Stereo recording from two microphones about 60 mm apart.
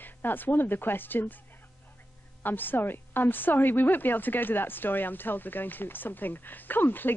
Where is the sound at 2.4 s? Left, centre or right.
Left.